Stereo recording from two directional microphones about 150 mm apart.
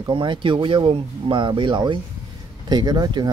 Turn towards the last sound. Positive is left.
turn(degrees=-25)  # may be behind; listen again after turning